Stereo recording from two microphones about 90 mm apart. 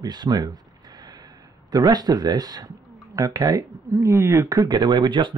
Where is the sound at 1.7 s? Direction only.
45° right (ahead or behind).